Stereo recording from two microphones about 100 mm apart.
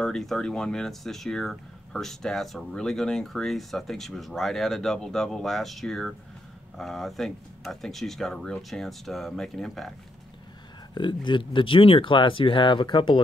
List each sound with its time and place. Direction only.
0.0 s speech: 5° left (ahead or behind)
11.0 s speech: 50° left (ahead or behind)